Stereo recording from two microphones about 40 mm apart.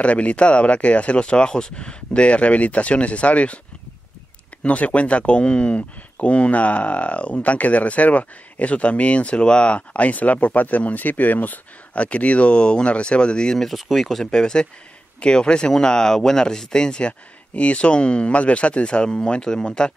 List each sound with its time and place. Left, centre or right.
0.0 s speech: left
4.6 s speech: left
11.9 s speech: left
13.6 s speech: centre
14.2 s speech: centre
17.6 s speech: left